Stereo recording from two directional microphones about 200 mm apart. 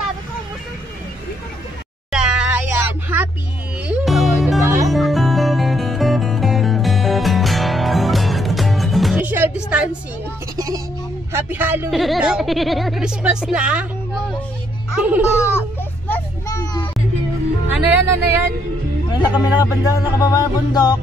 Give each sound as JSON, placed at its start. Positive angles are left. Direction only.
{"t": 2.0, "sound": "music", "side_deg": -5}
{"t": 4.6, "sound": "music", "side_deg": -15}
{"t": 4.9, "sound": "music", "side_deg": 0}
{"t": 10.5, "sound": "a sound", "side_deg": -20}
{"t": 12.0, "sound": "speech", "side_deg": 0}
{"t": 15.0, "sound": "speech", "side_deg": -5}
{"t": 15.3, "sound": "music", "side_deg": 15}
{"t": 16.1, "sound": "a sound", "side_deg": 15}
{"t": 17.7, "sound": "speech", "side_deg": -10}
{"t": 19.6, "sound": "music", "side_deg": 20}